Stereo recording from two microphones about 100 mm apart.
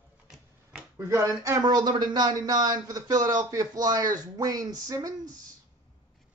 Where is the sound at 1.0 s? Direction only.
25° right (ahead or behind).